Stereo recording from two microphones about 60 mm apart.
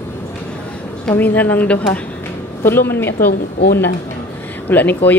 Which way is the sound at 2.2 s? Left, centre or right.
Left.